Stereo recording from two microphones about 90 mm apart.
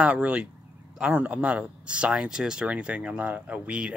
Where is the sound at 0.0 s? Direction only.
15° right (ahead or behind).